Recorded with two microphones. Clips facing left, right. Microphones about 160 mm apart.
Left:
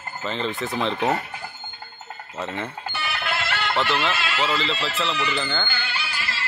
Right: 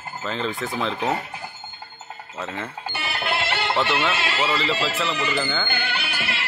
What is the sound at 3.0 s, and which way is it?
Music, 30° right (ahead or behind).